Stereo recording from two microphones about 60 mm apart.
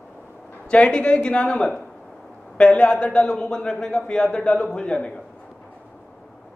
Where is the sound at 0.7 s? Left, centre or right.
Centre.